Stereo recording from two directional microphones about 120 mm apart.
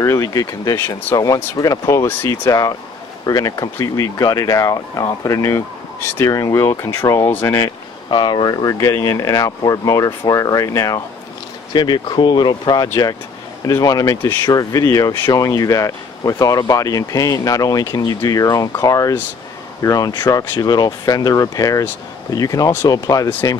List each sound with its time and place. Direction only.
0.0 s speech: 25° left (ahead or behind)
1.1 s speech: 30° left (ahead or behind)
8.1 s speech: 40° left (ahead or behind)
11.7 s speech: 40° left (ahead or behind)
12.8 s speech: 30° left (ahead or behind)